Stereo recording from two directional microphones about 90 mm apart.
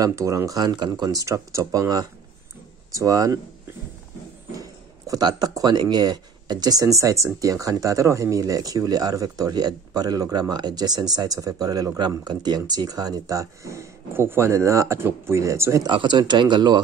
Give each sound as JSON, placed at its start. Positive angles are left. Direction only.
{"t": 0.0, "sound": "speech", "side_deg": -35}
{"t": 4.6, "sound": "speech", "side_deg": -40}
{"t": 15.9, "sound": "speech", "side_deg": -60}